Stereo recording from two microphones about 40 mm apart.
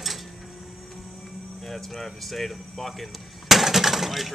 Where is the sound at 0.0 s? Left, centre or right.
Centre.